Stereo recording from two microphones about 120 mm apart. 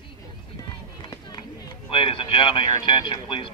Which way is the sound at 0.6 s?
35° left (ahead or behind).